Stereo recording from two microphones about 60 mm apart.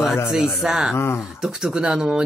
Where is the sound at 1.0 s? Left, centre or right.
Left.